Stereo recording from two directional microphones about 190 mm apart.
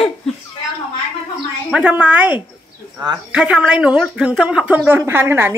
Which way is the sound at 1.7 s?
5° right (ahead or behind).